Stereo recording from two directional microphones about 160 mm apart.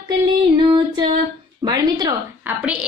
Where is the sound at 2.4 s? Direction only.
10° right (ahead or behind).